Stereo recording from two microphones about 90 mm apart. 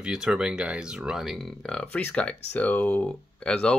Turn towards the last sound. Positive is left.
turn(degrees=10)  # may be behind; listen again after turning